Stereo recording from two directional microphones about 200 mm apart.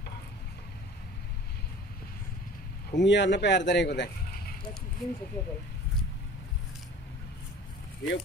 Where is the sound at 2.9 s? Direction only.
60° left (ahead or behind).